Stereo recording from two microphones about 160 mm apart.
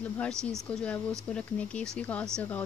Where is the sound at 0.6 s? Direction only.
10° left (ahead or behind).